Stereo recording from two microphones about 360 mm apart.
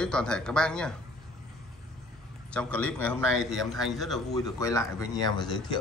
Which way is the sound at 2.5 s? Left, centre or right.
Centre.